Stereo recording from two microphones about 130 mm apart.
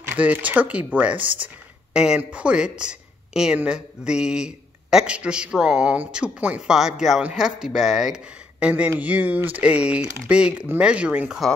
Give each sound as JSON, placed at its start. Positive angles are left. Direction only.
{"t": 0.1, "sound": "speech", "side_deg": -10}